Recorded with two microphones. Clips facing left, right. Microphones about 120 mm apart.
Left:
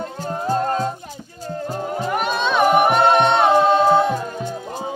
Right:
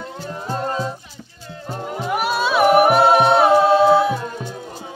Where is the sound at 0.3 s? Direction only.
40° left (ahead or behind).